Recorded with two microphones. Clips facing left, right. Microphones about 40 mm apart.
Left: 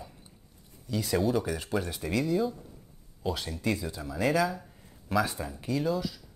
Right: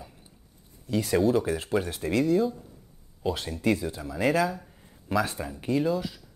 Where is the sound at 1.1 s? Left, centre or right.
Centre.